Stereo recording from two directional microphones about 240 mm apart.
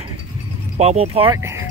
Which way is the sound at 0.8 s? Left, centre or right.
Right.